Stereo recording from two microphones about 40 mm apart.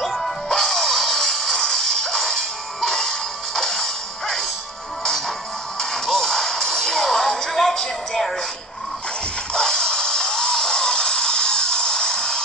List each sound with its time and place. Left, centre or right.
0.0 s music: centre
5.8 s music: centre
9.5 s music: centre